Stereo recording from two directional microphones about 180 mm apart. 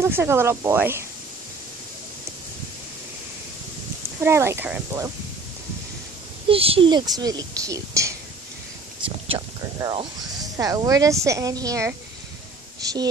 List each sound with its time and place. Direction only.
0.0 s speech: 15° right (ahead or behind)
4.2 s speech: 15° right (ahead or behind)
6.5 s a woman's voice: 30° right (ahead or behind)